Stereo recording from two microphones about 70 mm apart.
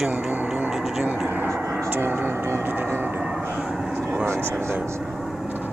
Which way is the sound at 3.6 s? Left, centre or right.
Centre.